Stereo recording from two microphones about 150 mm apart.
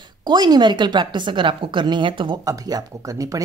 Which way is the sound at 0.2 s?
30° right (ahead or behind).